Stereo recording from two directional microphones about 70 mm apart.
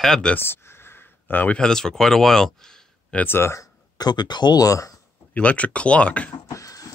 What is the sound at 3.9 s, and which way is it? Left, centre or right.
Speech, left.